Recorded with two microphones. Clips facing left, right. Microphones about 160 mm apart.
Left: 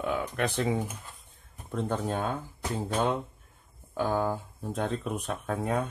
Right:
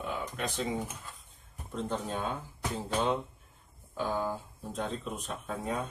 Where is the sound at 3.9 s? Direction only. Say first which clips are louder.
Left 4 dB; 60° left (ahead or behind).